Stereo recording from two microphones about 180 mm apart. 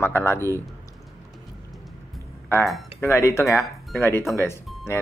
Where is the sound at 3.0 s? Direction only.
15° left (ahead or behind).